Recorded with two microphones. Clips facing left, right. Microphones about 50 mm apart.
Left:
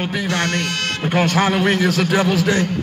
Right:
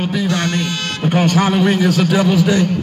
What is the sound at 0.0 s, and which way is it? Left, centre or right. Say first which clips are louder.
Speech: right 2 dB; left.